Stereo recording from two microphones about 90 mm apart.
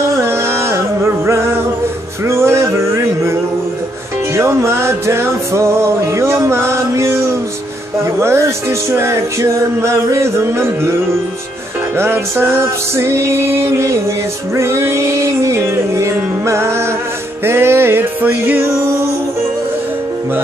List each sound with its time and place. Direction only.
0.2 s music: 30° right (ahead or behind)
4.4 s music: 30° right (ahead or behind)
12.0 s music: 25° right (ahead or behind)